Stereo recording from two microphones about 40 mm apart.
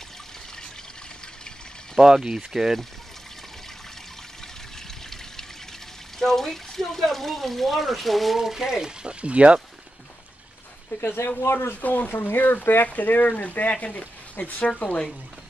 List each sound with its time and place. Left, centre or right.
2.0 s speech: centre
6.1 s speech: centre
9.2 s speech: right
11.1 s speech: left
11.8 s speech: left
12.1 s speech: left
13.7 s speech: left